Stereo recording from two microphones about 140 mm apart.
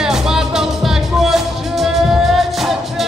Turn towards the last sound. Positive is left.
turn(degrees=0)  # may be behind; listen again after turning